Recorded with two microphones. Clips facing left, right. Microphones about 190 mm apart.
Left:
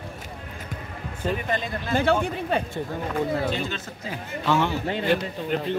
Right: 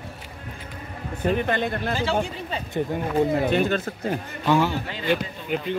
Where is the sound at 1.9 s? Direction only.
55° left (ahead or behind).